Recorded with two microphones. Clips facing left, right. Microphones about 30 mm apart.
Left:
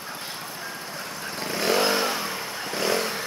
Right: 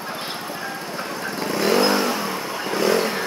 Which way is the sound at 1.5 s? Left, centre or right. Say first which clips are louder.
Right 4 dB; centre.